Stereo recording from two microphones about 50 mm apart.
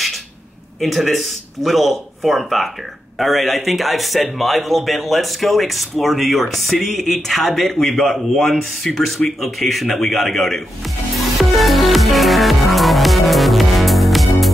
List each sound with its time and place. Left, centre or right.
0.7 s speech: centre
11.4 s music: centre